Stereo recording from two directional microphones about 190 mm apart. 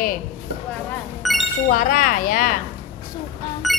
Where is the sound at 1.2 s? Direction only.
Centre (ahead or behind).